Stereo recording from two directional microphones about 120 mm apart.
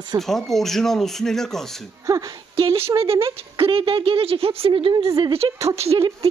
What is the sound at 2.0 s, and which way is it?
Speech, 30° right (ahead or behind).